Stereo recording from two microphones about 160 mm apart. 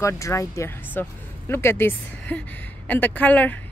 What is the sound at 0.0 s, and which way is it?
A woman's voice, 20° left (ahead or behind).